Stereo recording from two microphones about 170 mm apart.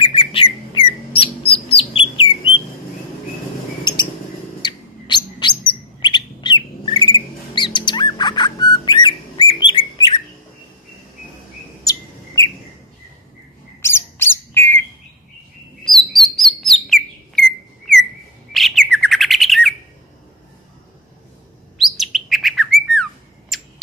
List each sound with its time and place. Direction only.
0.0 s bird: 30° left (ahead or behind)
4.6 s bird: 25° left (ahead or behind)
11.8 s chirp: 20° left (ahead or behind)
13.7 s bird: 15° left (ahead or behind)
15.8 s chirp: centre (ahead or behind)
18.5 s bird: centre (ahead or behind)
21.7 s chirp: centre (ahead or behind)
23.5 s a sound: centre (ahead or behind)